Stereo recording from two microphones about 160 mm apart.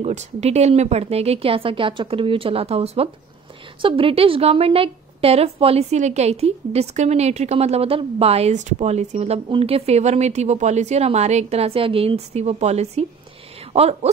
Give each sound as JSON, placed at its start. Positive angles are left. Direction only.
{"t": 0.0, "sound": "a woman's voice", "side_deg": -45}